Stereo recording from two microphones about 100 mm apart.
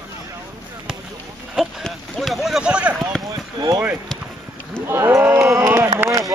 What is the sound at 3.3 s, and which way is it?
Basketball bounce, 45° right (ahead or behind).